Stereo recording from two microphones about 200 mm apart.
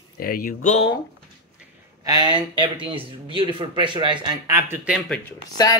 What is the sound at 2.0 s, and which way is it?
Speech, 20° right (ahead or behind).